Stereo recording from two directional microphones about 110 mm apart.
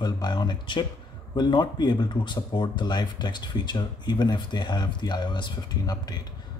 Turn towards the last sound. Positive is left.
turn(degrees=40)  # may be behind; listen again after turning